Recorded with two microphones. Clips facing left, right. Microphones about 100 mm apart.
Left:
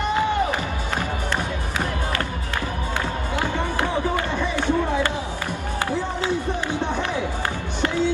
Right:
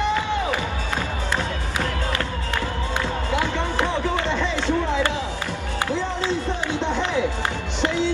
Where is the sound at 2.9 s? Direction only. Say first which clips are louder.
Right 2 dB; 20° right (ahead or behind).